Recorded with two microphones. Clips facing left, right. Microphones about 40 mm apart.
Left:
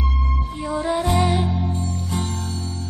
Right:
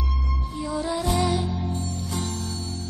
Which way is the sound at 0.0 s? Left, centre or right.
Left.